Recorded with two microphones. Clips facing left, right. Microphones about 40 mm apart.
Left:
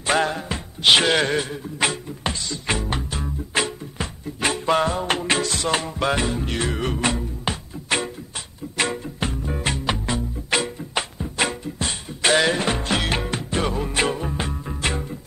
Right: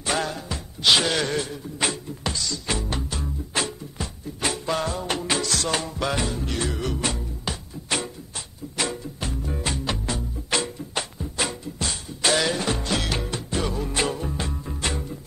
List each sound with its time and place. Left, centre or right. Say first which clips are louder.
0.0 s music: left 5 dB; left
3.0 s music: left 2 dB; left